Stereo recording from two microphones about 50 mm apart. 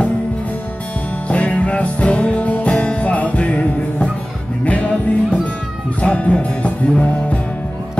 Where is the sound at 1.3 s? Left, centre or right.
Left.